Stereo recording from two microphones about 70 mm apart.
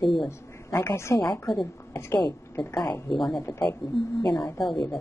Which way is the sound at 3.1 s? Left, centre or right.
Centre.